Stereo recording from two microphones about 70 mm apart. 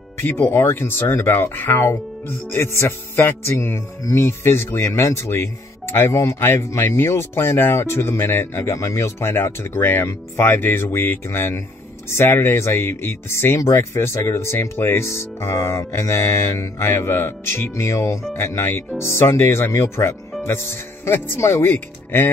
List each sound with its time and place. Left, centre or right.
0.2 s speech: left
13.6 s speech: left